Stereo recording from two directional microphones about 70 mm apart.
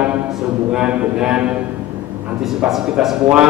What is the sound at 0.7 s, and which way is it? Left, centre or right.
Speech, centre.